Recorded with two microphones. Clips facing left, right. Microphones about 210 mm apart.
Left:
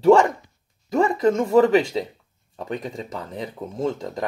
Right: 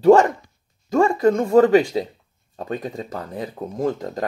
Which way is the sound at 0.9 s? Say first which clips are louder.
Right 2 dB; 20° left (ahead or behind).